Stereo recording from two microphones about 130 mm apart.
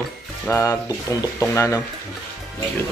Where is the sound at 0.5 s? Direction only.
25° left (ahead or behind).